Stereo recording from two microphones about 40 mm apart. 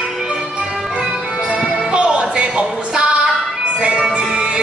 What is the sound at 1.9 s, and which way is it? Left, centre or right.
Music, right.